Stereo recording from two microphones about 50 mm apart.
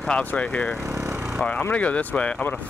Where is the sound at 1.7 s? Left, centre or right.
Left.